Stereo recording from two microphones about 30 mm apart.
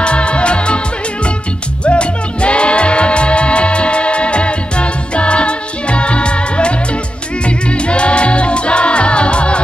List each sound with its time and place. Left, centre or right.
0.0 s music: left
1.9 s music: left